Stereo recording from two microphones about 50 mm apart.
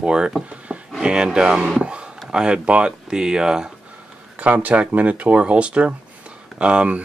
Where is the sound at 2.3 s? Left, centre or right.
Centre.